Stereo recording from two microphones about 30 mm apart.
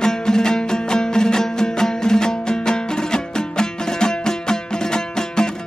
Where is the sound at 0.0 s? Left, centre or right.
Left.